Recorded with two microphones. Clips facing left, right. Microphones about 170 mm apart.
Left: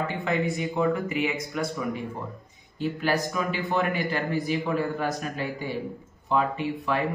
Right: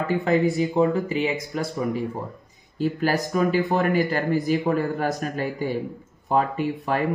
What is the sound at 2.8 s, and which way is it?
A man's voice, 45° right (ahead or behind).